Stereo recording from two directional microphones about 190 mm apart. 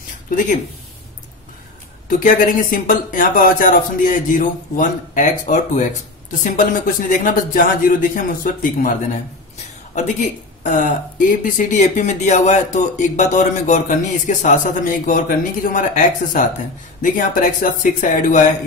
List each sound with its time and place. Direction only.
2.0 s speech: 45° left (ahead or behind)
10.6 s speech: 45° left (ahead or behind)